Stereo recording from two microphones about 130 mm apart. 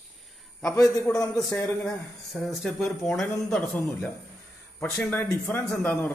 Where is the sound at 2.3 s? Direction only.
Centre (ahead or behind).